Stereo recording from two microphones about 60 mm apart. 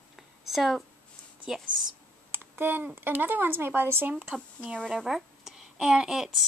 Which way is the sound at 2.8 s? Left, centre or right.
Right.